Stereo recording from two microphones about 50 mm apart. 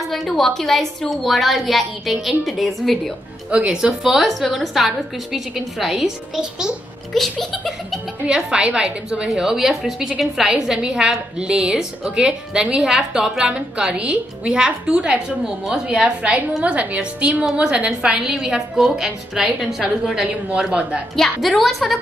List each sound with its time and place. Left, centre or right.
0.0 s a woman's voice: centre
3.4 s a woman's voice: centre
7.2 s a woman's voice: centre
8.5 s a woman's voice: centre
9.3 s a woman's voice: centre
16.2 s a woman's voice: right; by 19.7 s centre
20.5 s a woman's voice: right
21.4 s a woman's voice: centre